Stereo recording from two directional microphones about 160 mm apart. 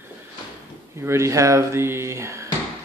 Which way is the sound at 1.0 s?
15° right (ahead or behind).